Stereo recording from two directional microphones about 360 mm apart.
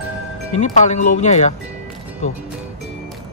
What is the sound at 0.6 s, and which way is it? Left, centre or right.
Speech, centre.